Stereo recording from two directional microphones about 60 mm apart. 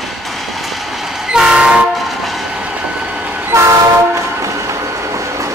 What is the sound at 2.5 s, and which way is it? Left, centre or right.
Vehicle, centre.